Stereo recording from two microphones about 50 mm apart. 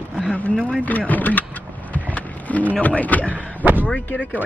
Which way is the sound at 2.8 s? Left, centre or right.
Left.